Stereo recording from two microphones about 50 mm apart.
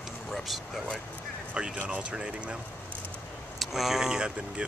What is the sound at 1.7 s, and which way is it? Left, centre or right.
Speech, right.